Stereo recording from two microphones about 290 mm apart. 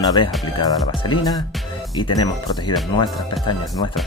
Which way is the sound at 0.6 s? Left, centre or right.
Centre.